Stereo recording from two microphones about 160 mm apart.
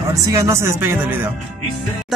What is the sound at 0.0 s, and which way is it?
Speech, 20° right (ahead or behind).